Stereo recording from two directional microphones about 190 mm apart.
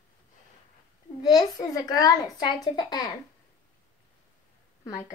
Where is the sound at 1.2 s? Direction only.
20° left (ahead or behind).